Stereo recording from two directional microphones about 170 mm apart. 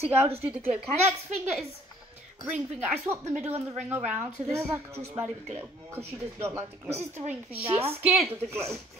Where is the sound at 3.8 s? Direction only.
10° right (ahead or behind).